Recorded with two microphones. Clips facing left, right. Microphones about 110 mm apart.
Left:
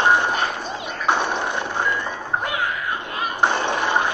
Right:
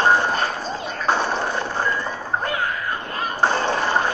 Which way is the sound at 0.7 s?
15° left (ahead or behind).